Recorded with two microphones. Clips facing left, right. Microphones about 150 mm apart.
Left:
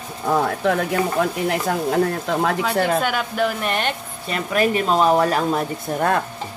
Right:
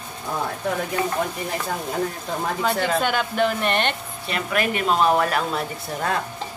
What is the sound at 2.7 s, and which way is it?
Speech, 55° left (ahead or behind).